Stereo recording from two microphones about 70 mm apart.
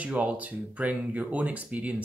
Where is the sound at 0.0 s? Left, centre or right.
Centre.